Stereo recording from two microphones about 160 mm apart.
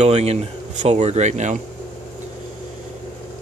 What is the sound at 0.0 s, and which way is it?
Speech, 40° right (ahead or behind).